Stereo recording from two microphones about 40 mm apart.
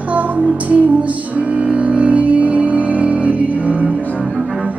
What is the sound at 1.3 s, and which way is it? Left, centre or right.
Music, right.